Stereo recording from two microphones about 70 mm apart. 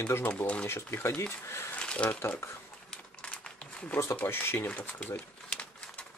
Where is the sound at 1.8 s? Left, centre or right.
Centre.